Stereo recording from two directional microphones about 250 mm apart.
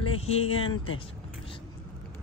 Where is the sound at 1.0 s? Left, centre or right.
Left.